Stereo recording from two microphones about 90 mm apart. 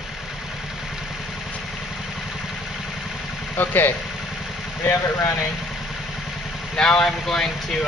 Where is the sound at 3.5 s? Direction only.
25° left (ahead or behind).